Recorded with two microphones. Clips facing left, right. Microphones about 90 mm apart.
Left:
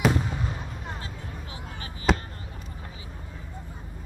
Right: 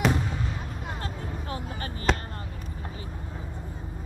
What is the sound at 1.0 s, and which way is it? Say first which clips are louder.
Vehicle: right 5 dB; 45° right (ahead or behind).